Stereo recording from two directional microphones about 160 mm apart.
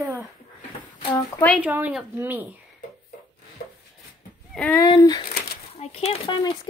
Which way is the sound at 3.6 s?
70° left (ahead or behind).